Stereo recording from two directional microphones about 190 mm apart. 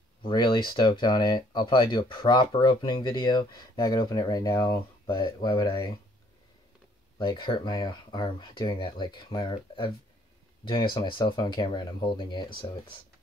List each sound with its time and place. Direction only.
0.2 s speech: 25° left (ahead or behind)
7.2 s speech: 25° left (ahead or behind)